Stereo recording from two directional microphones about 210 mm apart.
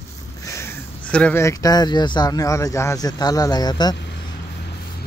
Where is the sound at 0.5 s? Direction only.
10° left (ahead or behind).